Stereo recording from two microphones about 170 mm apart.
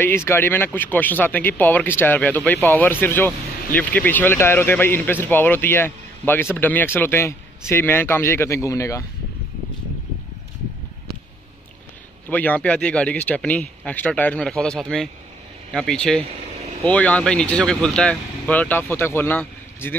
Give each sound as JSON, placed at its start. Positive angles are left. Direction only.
{"t": 0.0, "sound": "speech", "side_deg": 15}
{"t": 12.3, "sound": "speech", "side_deg": 10}